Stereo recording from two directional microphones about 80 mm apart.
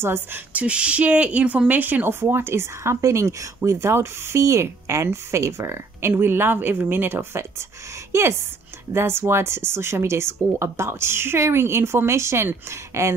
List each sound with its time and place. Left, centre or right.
0.0 s a woman's voice: right